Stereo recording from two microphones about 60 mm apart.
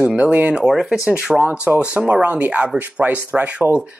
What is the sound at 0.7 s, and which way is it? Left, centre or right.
Speech, centre.